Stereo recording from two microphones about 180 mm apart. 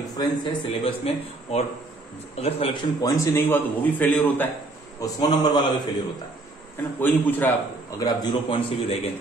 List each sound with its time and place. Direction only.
0.2 s a man's voice: 25° left (ahead or behind); by 4.5 s 10° left (ahead or behind)
5.0 s a man's voice: 25° left (ahead or behind)
7.0 s a man's voice: 10° left (ahead or behind)
8.0 s a man's voice: 25° left (ahead or behind)